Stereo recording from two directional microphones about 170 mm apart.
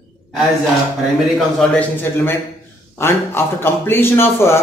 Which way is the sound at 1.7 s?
10° left (ahead or behind).